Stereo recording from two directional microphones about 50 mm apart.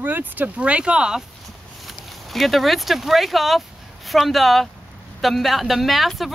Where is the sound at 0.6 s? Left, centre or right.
Right.